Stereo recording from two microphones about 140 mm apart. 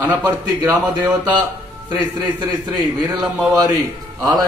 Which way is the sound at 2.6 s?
30° right (ahead or behind).